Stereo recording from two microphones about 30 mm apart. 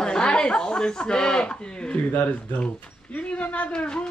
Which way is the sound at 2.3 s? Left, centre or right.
Left.